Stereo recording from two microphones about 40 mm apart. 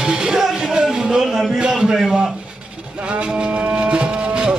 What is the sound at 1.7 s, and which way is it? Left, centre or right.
Speech, centre.